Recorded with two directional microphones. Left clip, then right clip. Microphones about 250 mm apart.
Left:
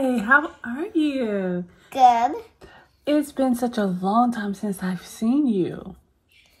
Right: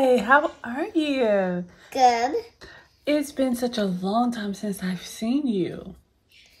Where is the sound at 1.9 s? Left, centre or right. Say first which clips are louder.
Left 3 dB; left.